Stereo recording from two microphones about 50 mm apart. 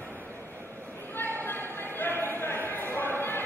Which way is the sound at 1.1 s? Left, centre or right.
Left.